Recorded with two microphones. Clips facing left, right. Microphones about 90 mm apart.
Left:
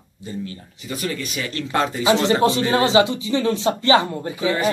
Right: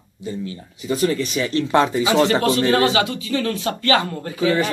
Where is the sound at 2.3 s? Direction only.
20° left (ahead or behind).